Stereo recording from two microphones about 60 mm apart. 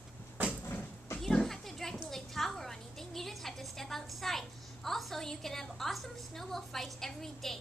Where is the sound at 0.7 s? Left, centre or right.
Left.